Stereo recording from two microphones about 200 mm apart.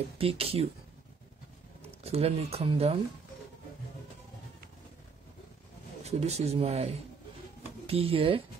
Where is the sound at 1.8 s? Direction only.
30° right (ahead or behind).